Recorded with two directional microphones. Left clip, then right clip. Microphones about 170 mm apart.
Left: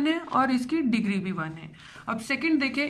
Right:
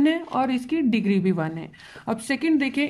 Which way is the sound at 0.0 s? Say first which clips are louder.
Right 2 dB; 20° right (ahead or behind).